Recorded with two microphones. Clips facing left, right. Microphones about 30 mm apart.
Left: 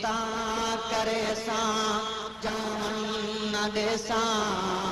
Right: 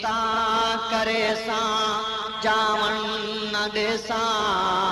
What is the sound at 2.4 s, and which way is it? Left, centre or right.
Mantra, right.